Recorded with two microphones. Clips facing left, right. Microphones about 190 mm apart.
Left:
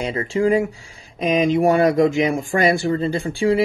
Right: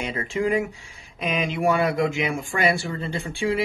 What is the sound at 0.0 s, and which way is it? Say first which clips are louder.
Speech: left 6 dB; 35° left (ahead or behind).